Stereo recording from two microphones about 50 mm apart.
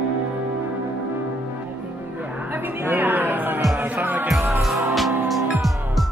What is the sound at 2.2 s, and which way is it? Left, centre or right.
Music, right.